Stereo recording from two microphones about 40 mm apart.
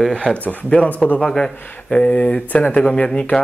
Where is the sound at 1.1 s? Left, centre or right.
Left.